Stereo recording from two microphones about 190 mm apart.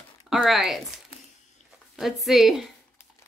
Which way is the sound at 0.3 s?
Centre (ahead or behind).